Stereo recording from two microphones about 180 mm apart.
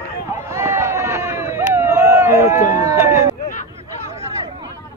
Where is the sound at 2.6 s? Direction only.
45° left (ahead or behind).